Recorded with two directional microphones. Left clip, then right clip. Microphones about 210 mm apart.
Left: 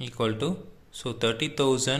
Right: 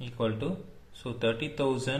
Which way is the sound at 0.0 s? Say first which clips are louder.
Left 4 dB; 30° left (ahead or behind).